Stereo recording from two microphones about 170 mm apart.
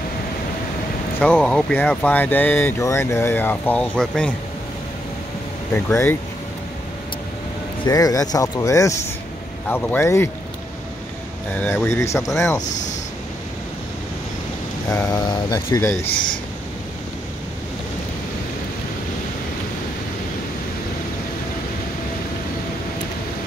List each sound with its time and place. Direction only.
1.2 s speech: 5° left (ahead or behind)
5.9 s speech: 10° left (ahead or behind)
7.8 s speech: 20° left (ahead or behind)
11.5 s speech: 10° left (ahead or behind)
12.3 s speech: centre (ahead or behind)
14.9 s speech: 20° left (ahead or behind)